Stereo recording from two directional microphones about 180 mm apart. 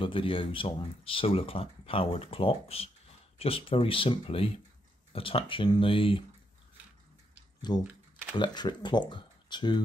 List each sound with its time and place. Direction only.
0.0 s speech: 30° left (ahead or behind)
7.7 s speech: 25° left (ahead or behind)